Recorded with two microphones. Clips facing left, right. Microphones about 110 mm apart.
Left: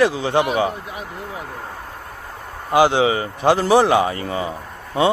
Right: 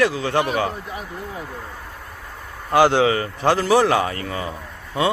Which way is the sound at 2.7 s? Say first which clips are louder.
Even; 10° left (ahead or behind).